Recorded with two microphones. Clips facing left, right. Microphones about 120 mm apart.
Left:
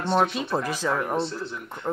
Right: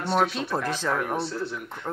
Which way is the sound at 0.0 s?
20° left (ahead or behind).